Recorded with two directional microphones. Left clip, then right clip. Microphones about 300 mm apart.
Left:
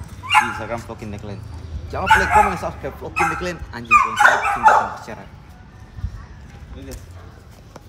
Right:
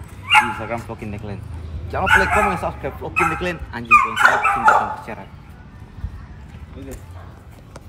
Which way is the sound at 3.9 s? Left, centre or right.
Left.